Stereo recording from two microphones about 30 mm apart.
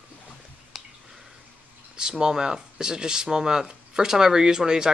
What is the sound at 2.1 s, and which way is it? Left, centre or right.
Speech, right.